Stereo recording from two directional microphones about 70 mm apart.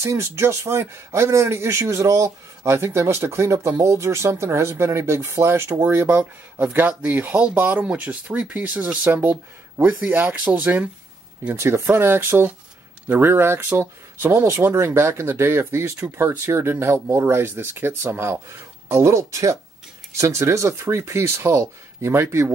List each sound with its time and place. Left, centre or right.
0.1 s speech: right
9.8 s speech: centre
10.1 s speech: right
11.5 s speech: right